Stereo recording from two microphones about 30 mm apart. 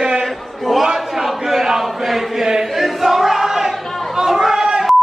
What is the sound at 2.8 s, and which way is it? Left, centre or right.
Crowd, centre.